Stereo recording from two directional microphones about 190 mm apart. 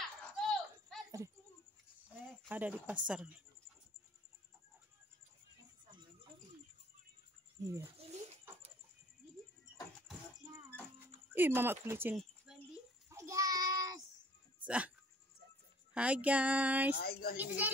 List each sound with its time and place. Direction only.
0.4 s a sound: centre (ahead or behind)
2.5 s speech: 10° right (ahead or behind)
7.6 s speech: 15° right (ahead or behind)
8.0 s a sound: 30° right (ahead or behind)
11.3 s speech: 10° right (ahead or behind)
13.1 s child singing: 15° right (ahead or behind)
14.6 s dog: 5° right (ahead or behind)
15.9 s speech: 5° right (ahead or behind)
16.9 s speech: 55° left (ahead or behind)